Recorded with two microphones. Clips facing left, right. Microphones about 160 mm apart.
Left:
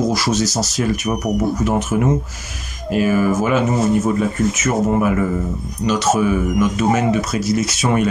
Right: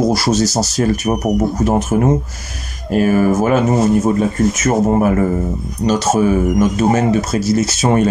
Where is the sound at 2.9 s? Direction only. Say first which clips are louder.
Right 3 dB; 50° right (ahead or behind).